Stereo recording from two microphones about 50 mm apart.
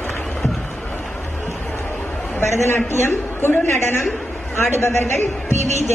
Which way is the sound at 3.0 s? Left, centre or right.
Left.